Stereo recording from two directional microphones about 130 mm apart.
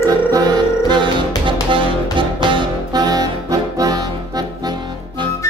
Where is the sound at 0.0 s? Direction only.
30° right (ahead or behind).